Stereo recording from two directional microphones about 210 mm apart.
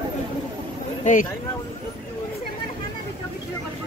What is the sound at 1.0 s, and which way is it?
Speech, 40° left (ahead or behind).